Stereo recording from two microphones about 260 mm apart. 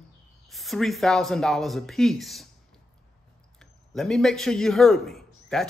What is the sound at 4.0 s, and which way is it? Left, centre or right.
Speech, centre.